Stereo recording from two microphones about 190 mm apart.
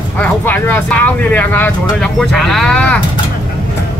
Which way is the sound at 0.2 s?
10° left (ahead or behind).